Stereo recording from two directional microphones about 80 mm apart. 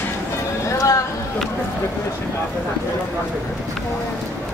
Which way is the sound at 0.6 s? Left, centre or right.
Left.